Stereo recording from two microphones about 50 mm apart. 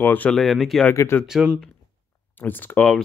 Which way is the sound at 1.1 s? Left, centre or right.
Left.